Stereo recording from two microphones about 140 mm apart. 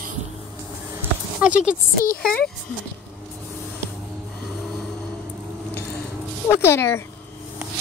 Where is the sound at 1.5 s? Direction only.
65° left (ahead or behind).